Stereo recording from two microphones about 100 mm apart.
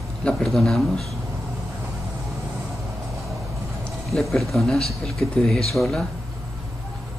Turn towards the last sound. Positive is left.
turn(degrees=5)  # may be behind; listen again after turning